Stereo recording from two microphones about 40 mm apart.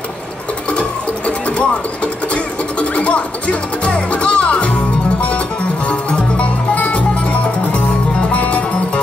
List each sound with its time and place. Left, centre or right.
0.7 s music: left
5.9 s music: left